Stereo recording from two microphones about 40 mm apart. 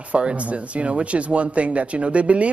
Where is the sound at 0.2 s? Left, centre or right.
Right.